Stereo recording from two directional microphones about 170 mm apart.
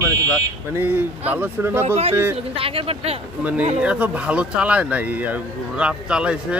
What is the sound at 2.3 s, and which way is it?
Speech, 35° right (ahead or behind).